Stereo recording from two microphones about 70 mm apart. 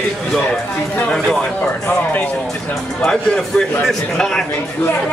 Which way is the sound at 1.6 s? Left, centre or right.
Centre.